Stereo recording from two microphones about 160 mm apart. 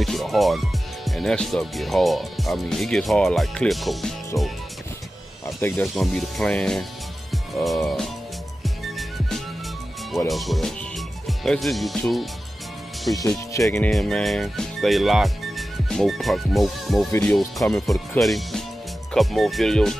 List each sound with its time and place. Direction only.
0.0 s speech: centre (ahead or behind)
5.6 s speech: 15° left (ahead or behind)
5.9 s speech: centre (ahead or behind)
8.6 s music: centre (ahead or behind)
10.1 s speech: centre (ahead or behind)
13.5 s speech: 20° left (ahead or behind)
13.7 s speech: 5° left (ahead or behind)